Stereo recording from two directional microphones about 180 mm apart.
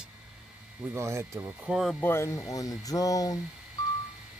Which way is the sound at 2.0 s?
15° left (ahead or behind).